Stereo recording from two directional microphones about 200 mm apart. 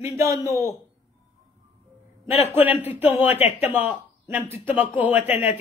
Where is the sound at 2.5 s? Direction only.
10° right (ahead or behind).